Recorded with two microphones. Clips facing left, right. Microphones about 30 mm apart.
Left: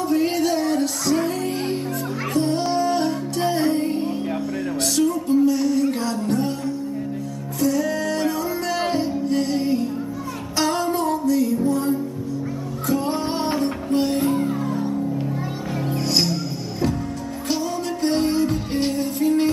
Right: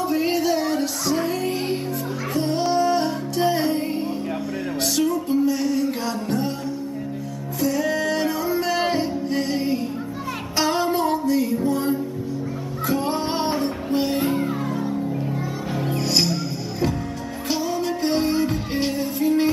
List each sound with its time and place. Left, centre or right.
0.1 s music: centre
7.6 s music: centre
15.9 s music: centre
17.5 s music: centre